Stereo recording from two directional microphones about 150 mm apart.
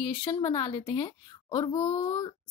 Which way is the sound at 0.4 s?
30° left (ahead or behind).